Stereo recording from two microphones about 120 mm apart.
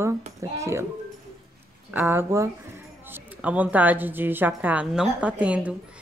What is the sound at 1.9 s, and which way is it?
A woman's voice, 15° right (ahead or behind).